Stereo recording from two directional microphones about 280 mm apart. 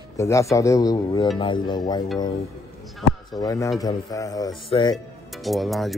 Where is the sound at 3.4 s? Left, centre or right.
Centre.